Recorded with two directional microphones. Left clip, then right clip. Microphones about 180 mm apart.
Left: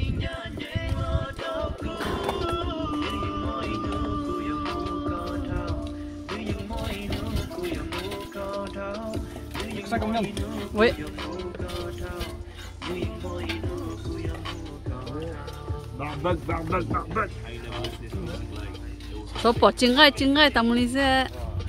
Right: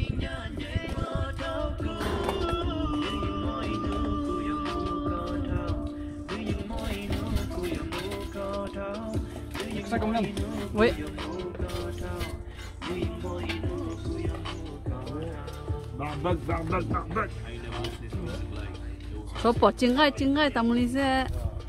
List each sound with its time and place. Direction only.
0.0 s music: 60° right (ahead or behind)
6.9 s music: 10° right (ahead or behind)
7.6 s music: 55° right (ahead or behind)
9.9 s speech: 15° left (ahead or behind)
11.0 s music: 45° right (ahead or behind)
16.2 s a man's voice: 30° right (ahead or behind)
16.9 s speech: 5° right (ahead or behind)
19.4 s speech: centre (ahead or behind)